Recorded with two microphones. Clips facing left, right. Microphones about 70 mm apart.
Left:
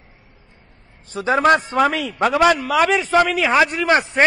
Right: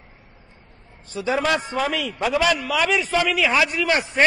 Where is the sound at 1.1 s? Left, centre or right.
Left.